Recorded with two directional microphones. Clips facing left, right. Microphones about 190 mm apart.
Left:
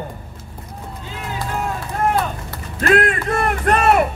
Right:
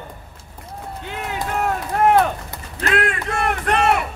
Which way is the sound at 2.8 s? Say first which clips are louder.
Left 5 dB; 45° left (ahead or behind).